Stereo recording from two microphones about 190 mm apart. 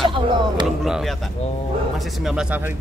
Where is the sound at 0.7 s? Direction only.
Centre (ahead or behind).